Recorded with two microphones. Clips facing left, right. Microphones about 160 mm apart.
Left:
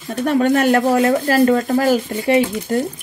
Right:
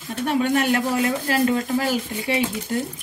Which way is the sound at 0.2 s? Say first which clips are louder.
Left 6 dB; 45° left (ahead or behind).